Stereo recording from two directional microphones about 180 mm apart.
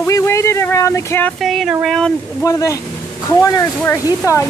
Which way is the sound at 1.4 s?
Centre (ahead or behind).